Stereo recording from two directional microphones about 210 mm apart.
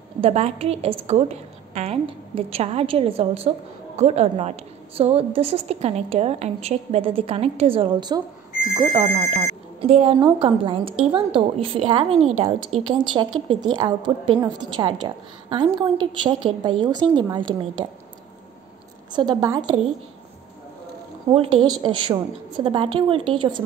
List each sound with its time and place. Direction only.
0.2 s a woman's voice: 30° right (ahead or behind)
19.1 s a woman's voice: 20° right (ahead or behind)
21.3 s a woman's voice: 25° right (ahead or behind)